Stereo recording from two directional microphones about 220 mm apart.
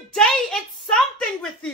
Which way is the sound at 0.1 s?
5° left (ahead or behind).